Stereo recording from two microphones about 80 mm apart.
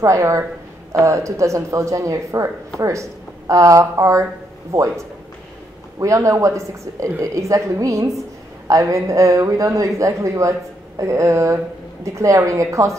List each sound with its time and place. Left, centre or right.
0.0 s speech: right